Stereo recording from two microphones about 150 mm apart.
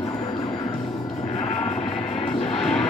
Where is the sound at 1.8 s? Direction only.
40° left (ahead or behind).